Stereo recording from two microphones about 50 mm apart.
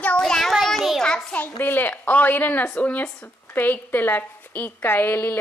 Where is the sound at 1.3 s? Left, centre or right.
Left.